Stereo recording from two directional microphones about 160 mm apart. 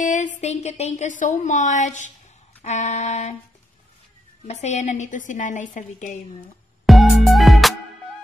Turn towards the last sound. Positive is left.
turn(degrees=0)  # may be behind; listen again after turning